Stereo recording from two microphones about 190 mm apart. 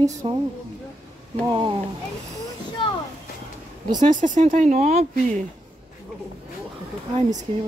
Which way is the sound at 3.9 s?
40° right (ahead or behind).